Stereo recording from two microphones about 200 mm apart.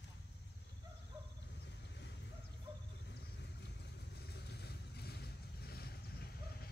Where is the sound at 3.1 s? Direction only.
60° left (ahead or behind).